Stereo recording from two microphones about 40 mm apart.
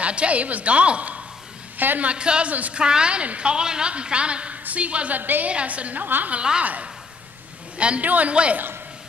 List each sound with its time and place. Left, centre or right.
0.0 s a woman's voice: right
5.2 s a woman's voice: right
5.5 s a woman's voice: right
6.0 s a woman's voice: right
6.6 s a woman's voice: right
7.7 s a man's voice: right
8.0 s a woman's voice: right
8.3 s a woman's voice: right